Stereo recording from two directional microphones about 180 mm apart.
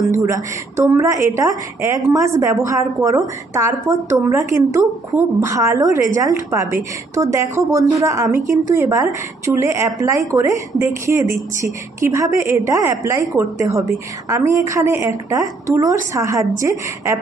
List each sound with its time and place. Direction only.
0.1 s a woman's voice: 15° right (ahead or behind)